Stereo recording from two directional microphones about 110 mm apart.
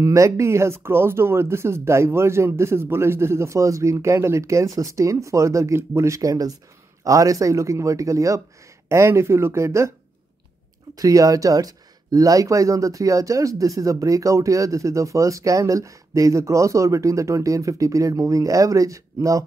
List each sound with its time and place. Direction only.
0.0 s speech: 30° right (ahead or behind)
11.0 s speech: 35° right (ahead or behind)